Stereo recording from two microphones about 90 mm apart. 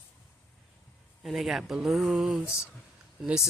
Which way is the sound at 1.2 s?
Centre (ahead or behind).